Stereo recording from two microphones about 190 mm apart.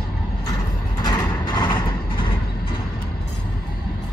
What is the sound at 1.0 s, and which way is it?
Vehicle, 20° left (ahead or behind).